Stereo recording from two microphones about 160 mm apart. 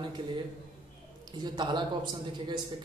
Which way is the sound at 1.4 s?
30° right (ahead or behind).